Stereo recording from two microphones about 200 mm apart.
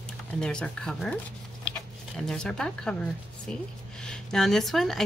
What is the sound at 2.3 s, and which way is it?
Speech, 5° left (ahead or behind).